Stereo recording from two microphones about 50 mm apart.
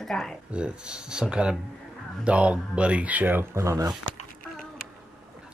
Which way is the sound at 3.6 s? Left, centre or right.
Right.